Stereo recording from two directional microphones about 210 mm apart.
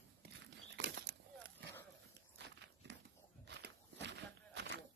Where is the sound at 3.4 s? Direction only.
55° right (ahead or behind).